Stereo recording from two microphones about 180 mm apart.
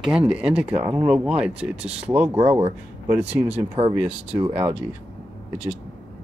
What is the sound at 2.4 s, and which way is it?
Speech, 35° right (ahead or behind).